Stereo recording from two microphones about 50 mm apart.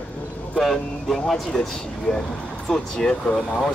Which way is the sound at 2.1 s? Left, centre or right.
Centre.